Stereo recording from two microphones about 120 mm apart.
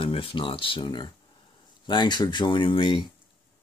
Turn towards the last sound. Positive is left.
turn(degrees=45)  # may be behind; listen again after turning